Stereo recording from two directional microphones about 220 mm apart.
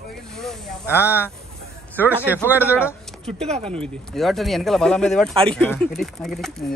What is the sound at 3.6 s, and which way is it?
Speech, 5° left (ahead or behind).